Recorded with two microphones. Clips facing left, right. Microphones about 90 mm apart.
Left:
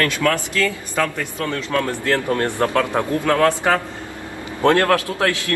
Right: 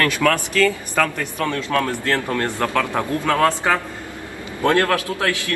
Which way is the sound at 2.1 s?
20° left (ahead or behind).